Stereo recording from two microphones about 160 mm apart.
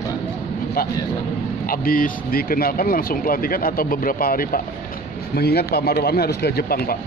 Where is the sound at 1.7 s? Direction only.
60° left (ahead or behind).